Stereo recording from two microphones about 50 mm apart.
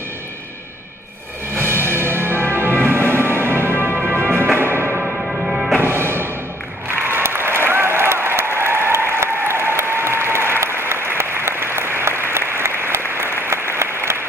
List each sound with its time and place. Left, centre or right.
1.6 s music: right
4.6 s music: right
5.2 s music: centre
5.9 s music: right
6.9 s applause: right